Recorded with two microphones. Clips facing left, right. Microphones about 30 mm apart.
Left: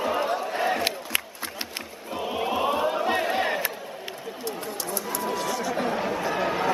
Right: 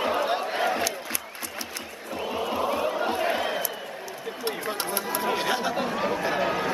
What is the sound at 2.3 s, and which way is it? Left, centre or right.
Chant, left.